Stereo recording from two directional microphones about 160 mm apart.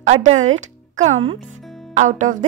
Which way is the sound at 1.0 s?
45° right (ahead or behind).